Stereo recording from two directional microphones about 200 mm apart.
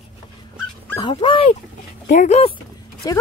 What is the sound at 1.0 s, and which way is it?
Speech, 25° left (ahead or behind).